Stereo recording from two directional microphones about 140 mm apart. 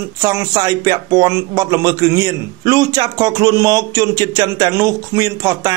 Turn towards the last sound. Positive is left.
turn(degrees=-25)  # may be behind; listen again after turning